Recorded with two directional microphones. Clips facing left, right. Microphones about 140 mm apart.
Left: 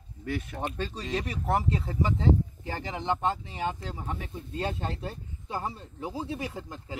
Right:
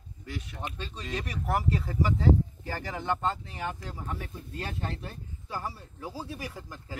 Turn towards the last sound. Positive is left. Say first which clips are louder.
# left 4 dB
turn(degrees=25)  # may be behind; listen again after turning